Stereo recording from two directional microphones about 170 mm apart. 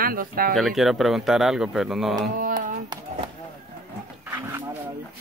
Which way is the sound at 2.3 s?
50° right (ahead or behind).